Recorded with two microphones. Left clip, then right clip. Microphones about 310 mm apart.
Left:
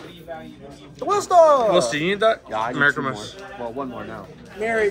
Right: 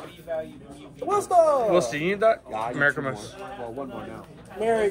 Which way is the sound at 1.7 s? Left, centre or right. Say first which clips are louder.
Left 3 dB; centre.